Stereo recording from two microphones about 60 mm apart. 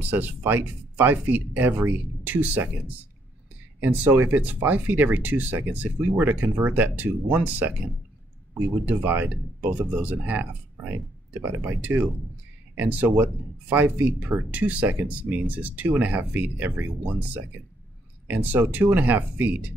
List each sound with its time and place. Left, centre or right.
0.0 s speech: right
4.2 s speech: right
8.8 s speech: right